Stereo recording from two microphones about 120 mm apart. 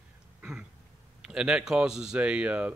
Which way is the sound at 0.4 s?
5° right (ahead or behind).